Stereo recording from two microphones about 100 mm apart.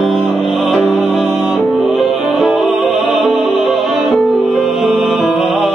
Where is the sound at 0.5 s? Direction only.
Centre (ahead or behind).